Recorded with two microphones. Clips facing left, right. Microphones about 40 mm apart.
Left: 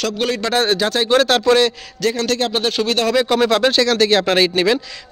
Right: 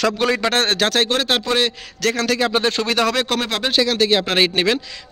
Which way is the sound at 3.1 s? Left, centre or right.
Right.